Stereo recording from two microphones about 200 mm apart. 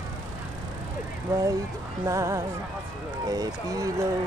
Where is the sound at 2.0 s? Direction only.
15° right (ahead or behind).